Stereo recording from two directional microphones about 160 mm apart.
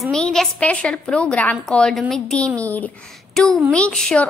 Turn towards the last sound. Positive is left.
turn(degrees=5)  # may be behind; listen again after turning